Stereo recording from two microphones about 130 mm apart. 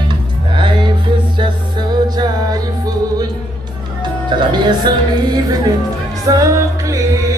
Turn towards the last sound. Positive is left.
turn(degrees=-25)  # may be behind; listen again after turning